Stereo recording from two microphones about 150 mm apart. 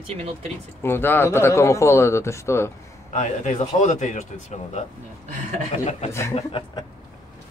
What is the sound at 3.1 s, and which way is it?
Speech, 55° left (ahead or behind).